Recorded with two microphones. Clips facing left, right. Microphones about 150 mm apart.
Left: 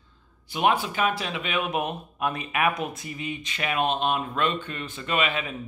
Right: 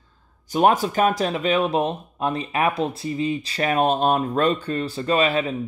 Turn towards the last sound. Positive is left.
turn(degrees=-35)  # may be behind; listen again after turning